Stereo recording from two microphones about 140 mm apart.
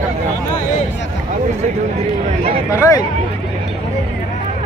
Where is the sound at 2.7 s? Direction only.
20° left (ahead or behind).